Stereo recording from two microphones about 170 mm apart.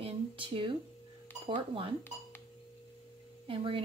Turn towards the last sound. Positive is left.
turn(degrees=-30)  # may be behind; listen again after turning